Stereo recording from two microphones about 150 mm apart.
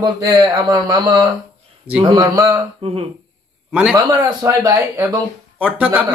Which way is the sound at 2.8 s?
40° right (ahead or behind).